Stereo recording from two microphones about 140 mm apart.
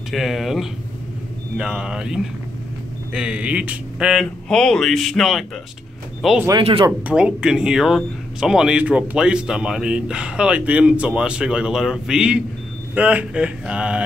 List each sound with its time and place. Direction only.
0.1 s speech: centre (ahead or behind)
6.6 s speech: 40° right (ahead or behind)
7.1 s speech: 5° right (ahead or behind)